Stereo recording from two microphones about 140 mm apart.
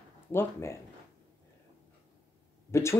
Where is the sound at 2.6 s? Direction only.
20° left (ahead or behind).